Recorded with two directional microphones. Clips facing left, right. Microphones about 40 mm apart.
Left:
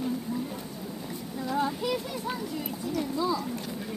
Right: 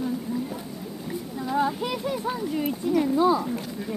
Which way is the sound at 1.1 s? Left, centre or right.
Centre.